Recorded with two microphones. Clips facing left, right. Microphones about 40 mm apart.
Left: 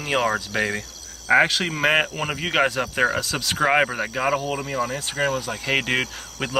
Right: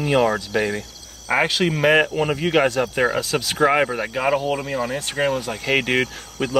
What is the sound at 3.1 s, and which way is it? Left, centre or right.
Speech, centre.